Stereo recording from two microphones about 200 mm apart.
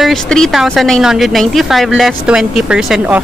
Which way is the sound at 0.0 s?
Centre (ahead or behind).